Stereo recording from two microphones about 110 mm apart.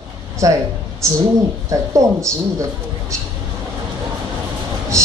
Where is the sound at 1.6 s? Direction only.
30° right (ahead or behind).